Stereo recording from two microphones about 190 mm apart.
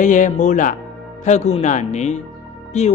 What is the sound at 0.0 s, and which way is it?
Speech, 40° left (ahead or behind).